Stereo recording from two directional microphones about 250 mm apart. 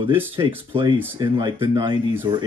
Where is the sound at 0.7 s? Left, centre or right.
Centre.